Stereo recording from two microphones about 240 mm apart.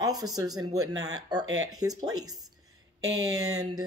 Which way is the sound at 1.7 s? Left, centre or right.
Centre.